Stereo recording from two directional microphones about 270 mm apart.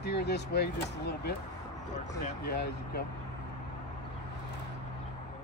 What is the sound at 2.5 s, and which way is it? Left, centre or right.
Speech, left.